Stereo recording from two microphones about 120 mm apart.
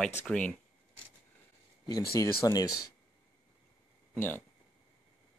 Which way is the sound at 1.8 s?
30° left (ahead or behind).